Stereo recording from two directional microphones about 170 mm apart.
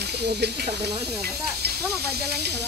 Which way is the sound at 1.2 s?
65° right (ahead or behind).